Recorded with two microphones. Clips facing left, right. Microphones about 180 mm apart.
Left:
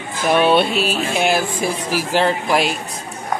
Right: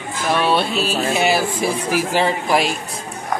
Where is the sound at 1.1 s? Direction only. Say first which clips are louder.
Right 1 dB; centre (ahead or behind).